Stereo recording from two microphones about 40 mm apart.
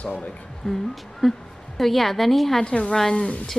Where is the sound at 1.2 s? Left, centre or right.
Centre.